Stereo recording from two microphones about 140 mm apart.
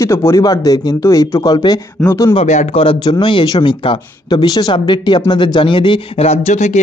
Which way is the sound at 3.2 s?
35° left (ahead or behind).